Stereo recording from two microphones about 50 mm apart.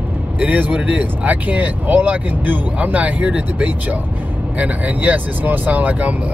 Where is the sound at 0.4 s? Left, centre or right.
Right.